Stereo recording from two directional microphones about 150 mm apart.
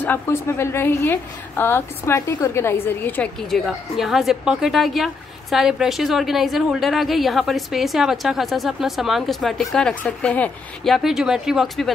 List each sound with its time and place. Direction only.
0.0 s a woman's voice: 15° left (ahead or behind)